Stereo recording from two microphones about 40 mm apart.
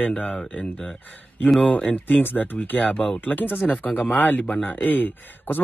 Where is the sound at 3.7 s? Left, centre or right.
Left.